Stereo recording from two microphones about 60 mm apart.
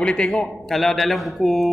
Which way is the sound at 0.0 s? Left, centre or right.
Centre.